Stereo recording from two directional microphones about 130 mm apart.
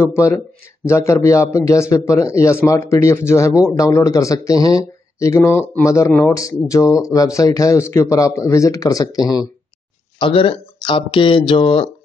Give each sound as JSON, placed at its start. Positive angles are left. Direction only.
{"t": 0.0, "sound": "speech", "side_deg": 20}
{"t": 10.1, "sound": "speech", "side_deg": 40}